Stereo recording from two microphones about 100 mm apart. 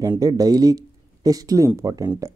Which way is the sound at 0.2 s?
40° right (ahead or behind).